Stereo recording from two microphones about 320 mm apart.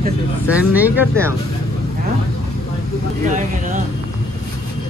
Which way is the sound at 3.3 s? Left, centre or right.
Right.